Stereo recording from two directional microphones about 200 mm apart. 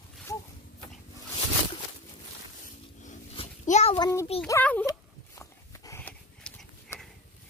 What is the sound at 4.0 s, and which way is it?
Child singing, 15° left (ahead or behind).